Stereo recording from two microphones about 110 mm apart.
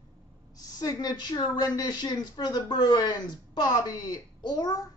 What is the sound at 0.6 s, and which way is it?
Speech, 35° left (ahead or behind).